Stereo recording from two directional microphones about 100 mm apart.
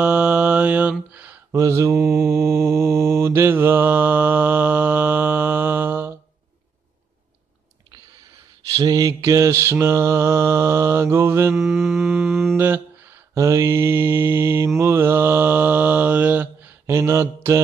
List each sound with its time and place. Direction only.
0.0 s mantra: 15° right (ahead or behind)
1.5 s mantra: 30° right (ahead or behind)
8.7 s mantra: 40° right (ahead or behind)
11.5 s mantra: centre (ahead or behind)
12.5 s mantra: 20° right (ahead or behind)
13.3 s mantra: 30° right (ahead or behind)